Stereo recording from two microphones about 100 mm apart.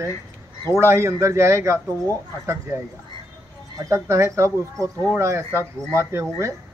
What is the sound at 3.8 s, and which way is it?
Speech, 30° right (ahead or behind).